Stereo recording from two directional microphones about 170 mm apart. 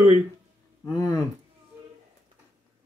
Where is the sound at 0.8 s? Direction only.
20° left (ahead or behind).